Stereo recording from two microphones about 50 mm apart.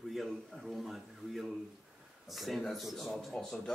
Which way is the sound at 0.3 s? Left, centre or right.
Centre.